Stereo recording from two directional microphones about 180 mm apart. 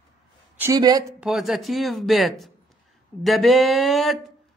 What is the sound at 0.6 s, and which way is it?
Speech, 20° right (ahead or behind).